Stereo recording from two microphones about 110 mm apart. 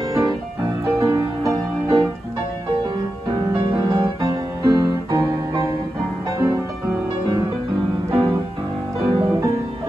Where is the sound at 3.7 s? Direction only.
40° right (ahead or behind).